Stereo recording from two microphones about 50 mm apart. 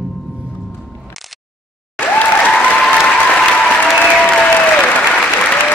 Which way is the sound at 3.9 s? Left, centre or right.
Left.